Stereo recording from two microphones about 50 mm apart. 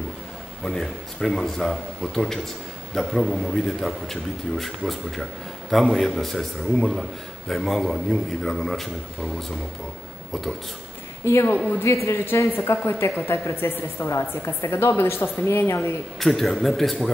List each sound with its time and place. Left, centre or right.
0.7 s a man's voice: centre
11.2 s a woman's voice: left
12.5 s a woman's voice: left
16.2 s a man's voice: centre